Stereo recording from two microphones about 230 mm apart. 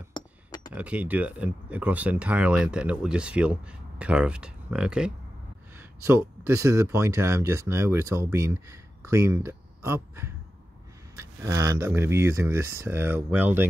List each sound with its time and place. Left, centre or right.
0.1 s glass: centre
0.7 s speech: centre